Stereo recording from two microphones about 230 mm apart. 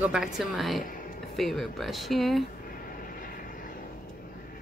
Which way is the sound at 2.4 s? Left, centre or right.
Left.